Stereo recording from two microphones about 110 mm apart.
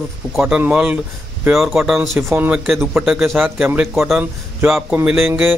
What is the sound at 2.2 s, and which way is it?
Speech, 15° right (ahead or behind).